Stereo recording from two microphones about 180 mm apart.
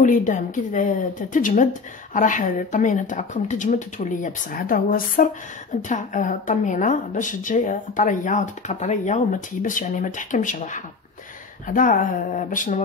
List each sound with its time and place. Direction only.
0.0 s a woman's voice: 45° left (ahead or behind)